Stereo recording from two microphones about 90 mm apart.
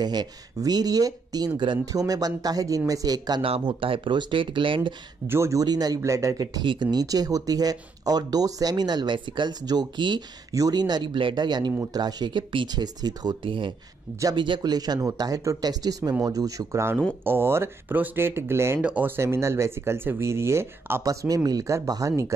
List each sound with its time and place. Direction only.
0.0 s speech: 50° right (ahead or behind)
3.4 s speech: 85° right; by 4.9 s 65° right (ahead or behind)
5.3 s speech: 35° right (ahead or behind)
5.9 s speech: 35° right (ahead or behind)
6.6 s speech: 60° right (ahead or behind)
10.5 s speech: 45° right (ahead or behind)
13.5 s speech: 65° right (ahead or behind); by 16.8 s 40° right (ahead or behind)
17.2 s speech: 25° right (ahead or behind)
18.8 s speech: 15° right (ahead or behind); by 22.2 s 40° right (ahead or behind)